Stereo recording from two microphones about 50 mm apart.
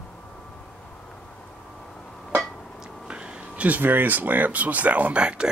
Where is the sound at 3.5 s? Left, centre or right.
Right.